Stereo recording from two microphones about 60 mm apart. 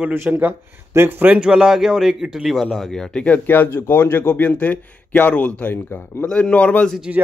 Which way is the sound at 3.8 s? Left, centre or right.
Left.